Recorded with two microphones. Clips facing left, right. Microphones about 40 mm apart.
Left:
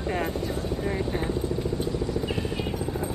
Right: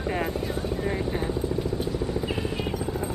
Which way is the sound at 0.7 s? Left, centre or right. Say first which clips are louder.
Even; centre.